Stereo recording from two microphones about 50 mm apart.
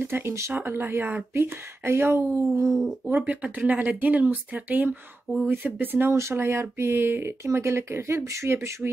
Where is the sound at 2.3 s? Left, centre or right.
Right.